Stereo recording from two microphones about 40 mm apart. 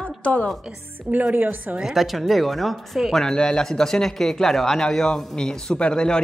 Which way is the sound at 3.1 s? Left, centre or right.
Centre.